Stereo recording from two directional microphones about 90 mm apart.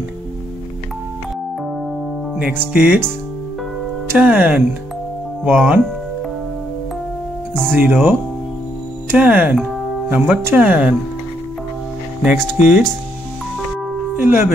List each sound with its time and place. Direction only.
2.5 s speech: 20° right (ahead or behind)
4.2 s speech: 15° right (ahead or behind)
7.7 s speech: 20° right (ahead or behind)
12.2 s speech: 10° right (ahead or behind)
14.1 s speech: 25° right (ahead or behind)